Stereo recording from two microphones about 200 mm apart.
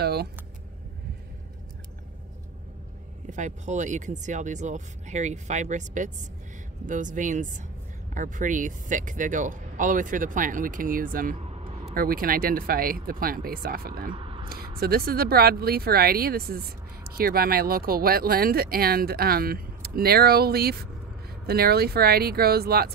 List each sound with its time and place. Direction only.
0.0 s speech: 50° right (ahead or behind)
3.3 s speech: 35° right (ahead or behind)
11.4 s vehicle: 30° right (ahead or behind)
11.9 s speech: 45° right (ahead or behind)
14.1 s a sound: 25° right (ahead or behind)
14.8 s speech: 50° right (ahead or behind)